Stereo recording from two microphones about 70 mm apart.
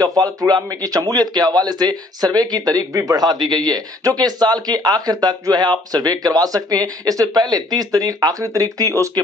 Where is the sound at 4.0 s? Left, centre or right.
Right.